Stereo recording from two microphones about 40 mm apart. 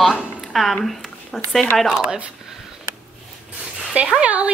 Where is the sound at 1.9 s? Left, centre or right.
Right.